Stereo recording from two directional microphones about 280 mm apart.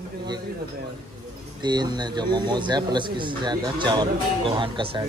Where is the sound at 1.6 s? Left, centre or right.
Centre.